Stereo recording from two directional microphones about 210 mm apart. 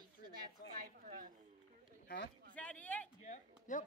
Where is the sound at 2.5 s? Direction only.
5° left (ahead or behind).